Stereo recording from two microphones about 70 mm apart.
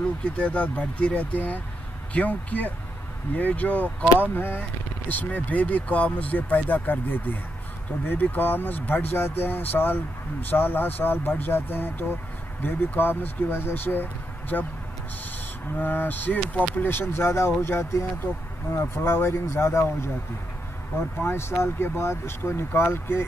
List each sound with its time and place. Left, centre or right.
0.2 s speech: centre
15.7 s speech: left
21.2 s speech: left